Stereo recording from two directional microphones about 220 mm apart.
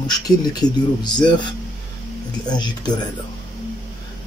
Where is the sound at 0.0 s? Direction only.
20° left (ahead or behind).